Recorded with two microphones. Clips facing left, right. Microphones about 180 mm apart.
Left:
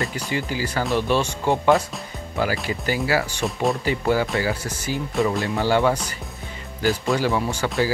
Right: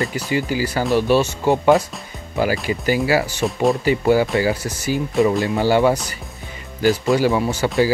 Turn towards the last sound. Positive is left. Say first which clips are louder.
# right 5 dB
turn(degrees=-5)  # may be behind; listen again after turning